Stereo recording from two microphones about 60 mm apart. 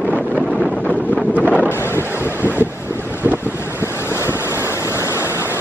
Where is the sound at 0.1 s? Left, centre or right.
Centre.